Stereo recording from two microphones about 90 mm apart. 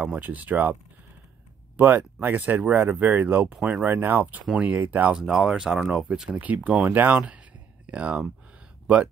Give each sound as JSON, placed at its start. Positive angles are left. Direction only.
{"t": 0.0, "sound": "speech", "side_deg": -15}
{"t": 1.8, "sound": "speech", "side_deg": -20}
{"t": 5.1, "sound": "speech", "side_deg": -10}